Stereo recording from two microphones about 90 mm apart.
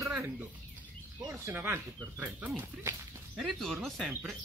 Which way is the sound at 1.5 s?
25° right (ahead or behind).